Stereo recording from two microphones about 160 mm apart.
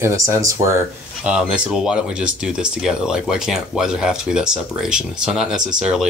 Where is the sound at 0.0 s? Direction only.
20° right (ahead or behind).